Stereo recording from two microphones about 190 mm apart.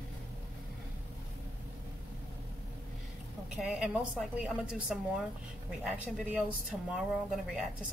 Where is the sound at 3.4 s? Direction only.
5° right (ahead or behind).